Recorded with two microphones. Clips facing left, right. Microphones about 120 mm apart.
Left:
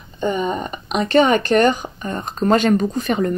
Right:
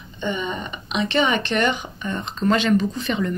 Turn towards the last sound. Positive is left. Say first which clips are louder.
# left 4 dB
turn(degrees=45)  # may be behind; listen again after turning